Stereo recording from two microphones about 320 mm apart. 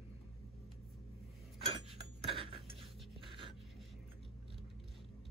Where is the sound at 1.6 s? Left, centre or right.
Centre.